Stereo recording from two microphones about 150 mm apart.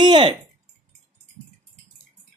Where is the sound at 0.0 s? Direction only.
35° right (ahead or behind).